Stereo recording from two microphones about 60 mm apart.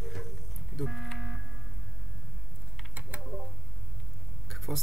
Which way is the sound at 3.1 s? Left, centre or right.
Right.